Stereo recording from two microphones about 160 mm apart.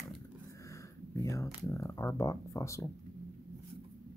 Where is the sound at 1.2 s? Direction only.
20° left (ahead or behind).